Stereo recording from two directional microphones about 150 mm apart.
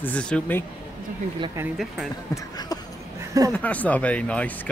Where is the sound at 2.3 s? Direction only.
25° left (ahead or behind).